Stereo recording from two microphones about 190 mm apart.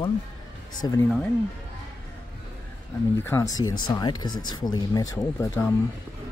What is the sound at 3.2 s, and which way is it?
Speech, 15° left (ahead or behind).